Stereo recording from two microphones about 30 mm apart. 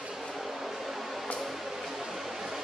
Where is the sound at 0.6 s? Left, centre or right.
Centre.